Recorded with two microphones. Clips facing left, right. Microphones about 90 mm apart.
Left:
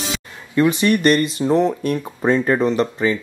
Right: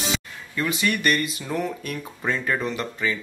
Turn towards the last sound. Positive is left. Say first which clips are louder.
# left 8 dB
turn(degrees=35)  # may be behind; listen again after turning